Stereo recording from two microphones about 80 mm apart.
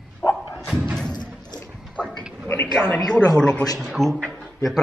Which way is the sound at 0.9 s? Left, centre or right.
Centre.